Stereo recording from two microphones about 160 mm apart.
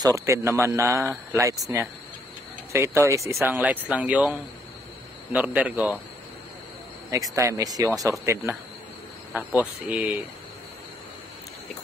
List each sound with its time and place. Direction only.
0.0 s a man's voice: 20° right (ahead or behind)
7.3 s speech: 20° right (ahead or behind)
9.3 s a man's voice: 10° right (ahead or behind)